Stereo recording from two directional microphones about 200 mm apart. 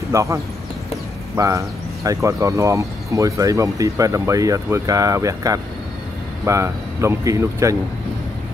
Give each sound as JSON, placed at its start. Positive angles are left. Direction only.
{"t": 0.1, "sound": "speech", "side_deg": -15}